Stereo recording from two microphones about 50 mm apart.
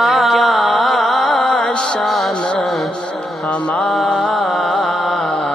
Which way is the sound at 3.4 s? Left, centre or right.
Left.